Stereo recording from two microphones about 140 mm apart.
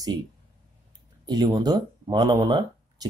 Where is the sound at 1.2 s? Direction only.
30° right (ahead or behind).